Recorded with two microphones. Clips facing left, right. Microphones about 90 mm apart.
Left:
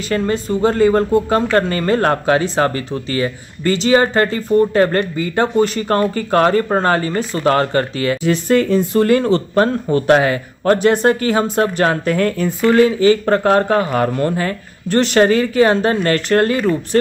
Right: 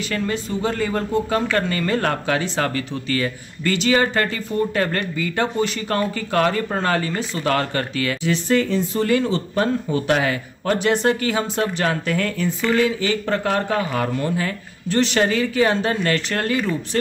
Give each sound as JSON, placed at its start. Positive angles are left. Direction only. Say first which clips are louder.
{"t": 0.1, "sound": "speech", "louder": "left 8 dB", "side_deg": 40}
{"t": 8.2, "sound": "speech", "louder": "left 4 dB", "side_deg": 50}